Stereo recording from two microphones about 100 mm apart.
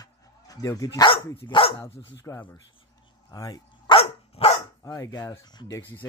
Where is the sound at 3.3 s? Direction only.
40° left (ahead or behind).